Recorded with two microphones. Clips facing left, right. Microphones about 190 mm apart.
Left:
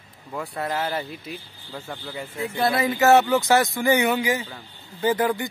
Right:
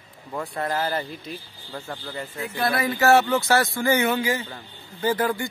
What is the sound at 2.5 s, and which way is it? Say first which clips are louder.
Speech: left 2 dB; 25° left (ahead or behind).